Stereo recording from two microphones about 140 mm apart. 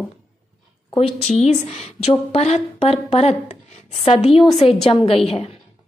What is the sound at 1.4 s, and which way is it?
A woman's voice, 45° left (ahead or behind).